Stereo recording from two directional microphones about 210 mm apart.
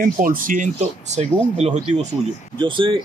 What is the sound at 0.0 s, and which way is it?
Speech, 40° right (ahead or behind).